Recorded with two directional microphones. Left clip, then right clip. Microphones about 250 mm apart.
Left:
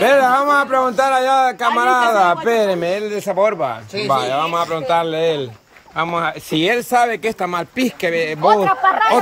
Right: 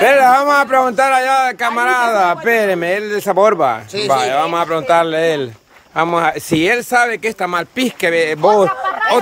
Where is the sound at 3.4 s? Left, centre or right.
Right.